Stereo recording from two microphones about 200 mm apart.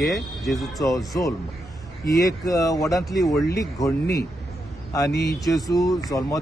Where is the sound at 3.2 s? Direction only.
Centre (ahead or behind).